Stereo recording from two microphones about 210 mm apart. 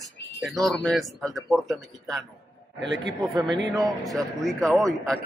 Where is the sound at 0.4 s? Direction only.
Centre (ahead or behind).